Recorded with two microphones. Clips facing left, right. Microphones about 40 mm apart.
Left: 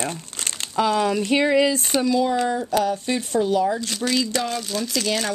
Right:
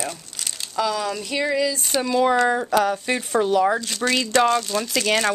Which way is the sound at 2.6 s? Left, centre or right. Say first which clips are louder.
Right 2 dB; right.